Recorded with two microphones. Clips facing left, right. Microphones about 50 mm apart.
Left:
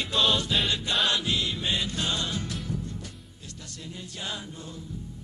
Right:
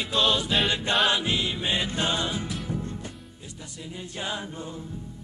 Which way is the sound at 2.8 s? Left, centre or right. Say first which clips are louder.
Right 3 dB; right.